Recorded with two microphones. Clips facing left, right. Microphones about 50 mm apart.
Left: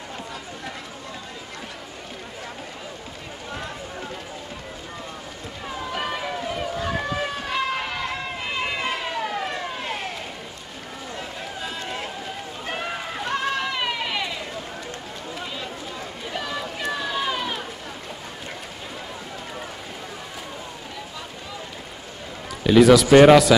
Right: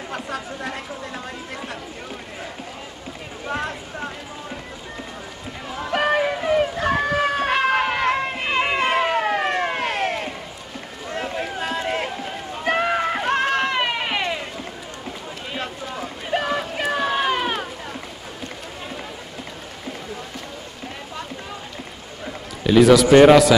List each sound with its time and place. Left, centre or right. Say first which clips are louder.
5.9 s a sound: right 10 dB; right
11.1 s run: right 9 dB; right
16.3 s boat: right 7 dB; right
16.9 s cat: right 6 dB; right
22.6 s a man's voice: right 1 dB; centre